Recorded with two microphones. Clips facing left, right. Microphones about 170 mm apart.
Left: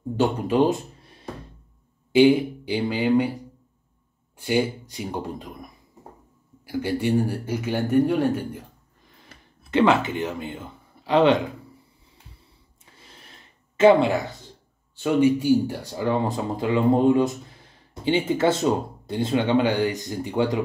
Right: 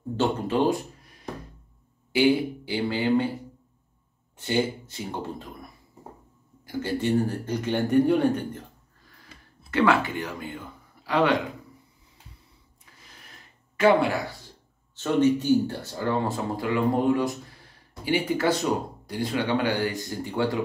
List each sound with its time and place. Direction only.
0.2 s speech: 15° left (ahead or behind)
4.4 s speech: 10° left (ahead or behind)
12.9 s a sound: 25° left (ahead or behind)
15.0 s speech: 10° left (ahead or behind)